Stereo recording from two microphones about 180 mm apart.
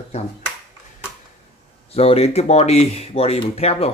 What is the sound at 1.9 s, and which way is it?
Speech, 35° left (ahead or behind).